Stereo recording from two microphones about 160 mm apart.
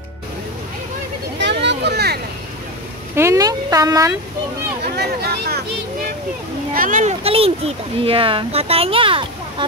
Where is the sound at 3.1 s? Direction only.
20° right (ahead or behind).